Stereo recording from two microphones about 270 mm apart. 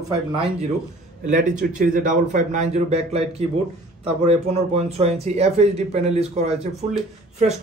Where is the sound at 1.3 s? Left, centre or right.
Right.